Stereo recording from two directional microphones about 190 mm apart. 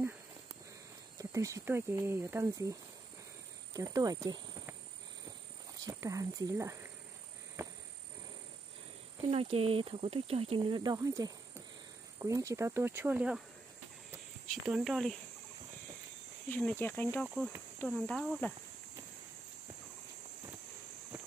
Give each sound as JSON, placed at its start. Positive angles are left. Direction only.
{"t": 1.1, "sound": "speech", "side_deg": -15}
{"t": 5.9, "sound": "speech", "side_deg": -15}
{"t": 7.6, "sound": "a sound", "side_deg": -15}
{"t": 9.3, "sound": "speech", "side_deg": -30}
{"t": 14.5, "sound": "speech", "side_deg": 0}
{"t": 16.4, "sound": "speech", "side_deg": 10}